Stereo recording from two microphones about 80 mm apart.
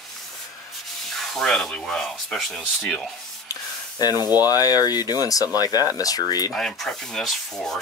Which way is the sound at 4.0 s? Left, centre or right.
Left.